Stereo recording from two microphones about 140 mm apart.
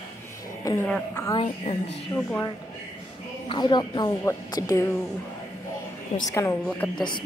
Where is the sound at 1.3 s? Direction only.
45° left (ahead or behind).